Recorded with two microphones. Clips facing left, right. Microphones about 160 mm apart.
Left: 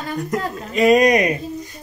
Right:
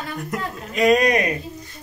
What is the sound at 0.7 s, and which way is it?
Speech, 5° left (ahead or behind).